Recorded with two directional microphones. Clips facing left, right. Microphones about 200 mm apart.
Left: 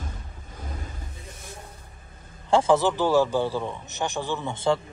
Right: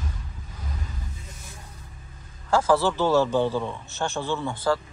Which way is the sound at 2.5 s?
25° left (ahead or behind).